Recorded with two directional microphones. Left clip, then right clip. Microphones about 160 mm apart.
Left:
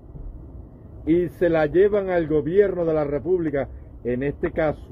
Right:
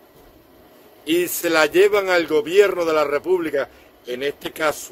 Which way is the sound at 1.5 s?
25° right (ahead or behind).